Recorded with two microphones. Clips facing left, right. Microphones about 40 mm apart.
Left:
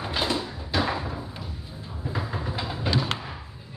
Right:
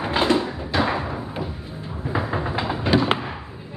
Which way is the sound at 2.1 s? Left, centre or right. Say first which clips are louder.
Right 7 dB; right.